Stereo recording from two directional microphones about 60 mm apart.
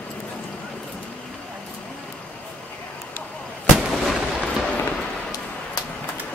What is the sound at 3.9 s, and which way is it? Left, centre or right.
Artillery fire, centre.